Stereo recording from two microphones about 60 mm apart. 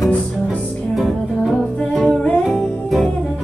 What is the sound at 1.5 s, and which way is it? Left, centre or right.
Music, centre.